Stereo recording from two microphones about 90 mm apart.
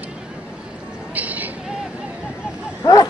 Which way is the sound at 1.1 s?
15° right (ahead or behind).